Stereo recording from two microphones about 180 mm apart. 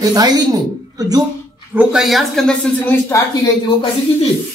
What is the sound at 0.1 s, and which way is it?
Speech, 20° right (ahead or behind).